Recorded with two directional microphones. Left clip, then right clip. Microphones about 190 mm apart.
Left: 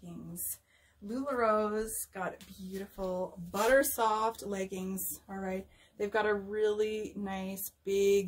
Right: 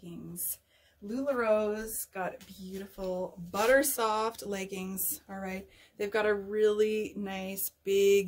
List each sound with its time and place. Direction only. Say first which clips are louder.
1.2 s speech: right 2 dB; 20° right (ahead or behind)